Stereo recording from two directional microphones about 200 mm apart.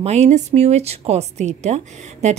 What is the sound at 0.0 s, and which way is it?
Speech, 35° right (ahead or behind).